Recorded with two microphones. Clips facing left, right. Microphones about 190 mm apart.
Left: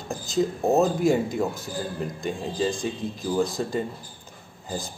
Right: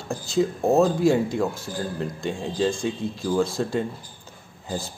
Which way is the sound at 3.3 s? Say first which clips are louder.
Right 1 dB; 15° left (ahead or behind).